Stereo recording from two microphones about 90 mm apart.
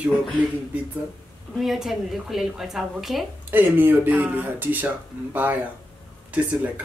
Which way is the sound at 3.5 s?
25° right (ahead or behind).